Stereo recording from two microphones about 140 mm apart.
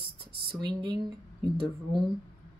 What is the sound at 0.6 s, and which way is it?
Speech, 30° right (ahead or behind).